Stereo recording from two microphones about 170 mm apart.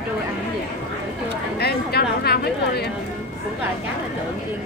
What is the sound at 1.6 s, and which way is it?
Speech, 70° left (ahead or behind).